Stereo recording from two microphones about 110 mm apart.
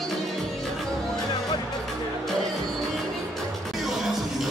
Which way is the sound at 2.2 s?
5° left (ahead or behind).